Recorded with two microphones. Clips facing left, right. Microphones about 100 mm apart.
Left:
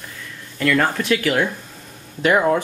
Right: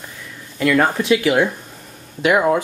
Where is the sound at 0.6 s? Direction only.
15° right (ahead or behind).